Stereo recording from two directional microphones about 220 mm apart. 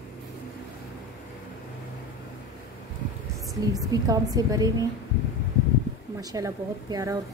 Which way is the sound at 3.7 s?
15° right (ahead or behind).